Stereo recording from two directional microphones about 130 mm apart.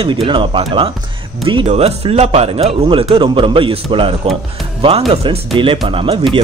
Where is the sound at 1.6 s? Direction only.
55° right (ahead or behind).